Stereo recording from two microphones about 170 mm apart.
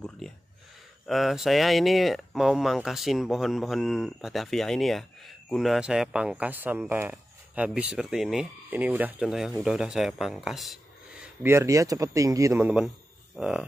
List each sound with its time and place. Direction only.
0.2 s a sound: centre (ahead or behind)
1.0 s speech: centre (ahead or behind)
11.4 s a man's voice: 15° right (ahead or behind)